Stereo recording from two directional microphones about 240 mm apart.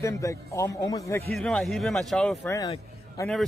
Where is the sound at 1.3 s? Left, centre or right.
Centre.